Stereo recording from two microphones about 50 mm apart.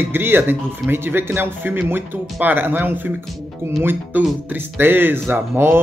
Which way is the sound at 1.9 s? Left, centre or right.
Right.